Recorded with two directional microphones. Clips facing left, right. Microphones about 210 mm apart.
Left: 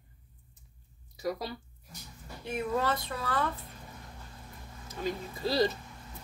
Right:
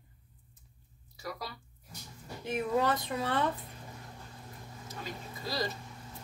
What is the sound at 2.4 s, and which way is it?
Speech, 15° right (ahead or behind).